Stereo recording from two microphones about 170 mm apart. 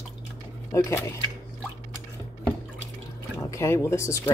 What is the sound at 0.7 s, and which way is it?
Speech, 15° left (ahead or behind).